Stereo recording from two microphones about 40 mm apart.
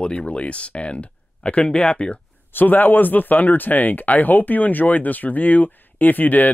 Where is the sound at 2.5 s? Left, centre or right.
Left.